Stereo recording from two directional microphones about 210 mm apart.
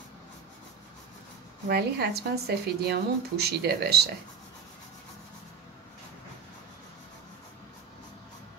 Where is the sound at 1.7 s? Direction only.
50° right (ahead or behind).